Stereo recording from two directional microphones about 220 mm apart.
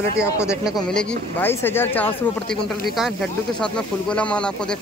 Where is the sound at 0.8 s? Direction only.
5° left (ahead or behind).